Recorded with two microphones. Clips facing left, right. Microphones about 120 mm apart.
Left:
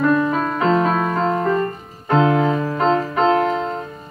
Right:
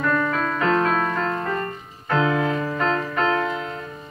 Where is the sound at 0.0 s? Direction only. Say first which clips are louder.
Left 5 dB; 20° left (ahead or behind).